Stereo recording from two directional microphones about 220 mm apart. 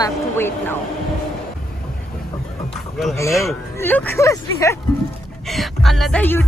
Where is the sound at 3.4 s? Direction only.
10° left (ahead or behind).